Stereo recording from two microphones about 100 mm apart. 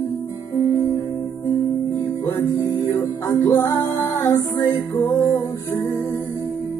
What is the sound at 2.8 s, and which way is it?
Music, 20° left (ahead or behind).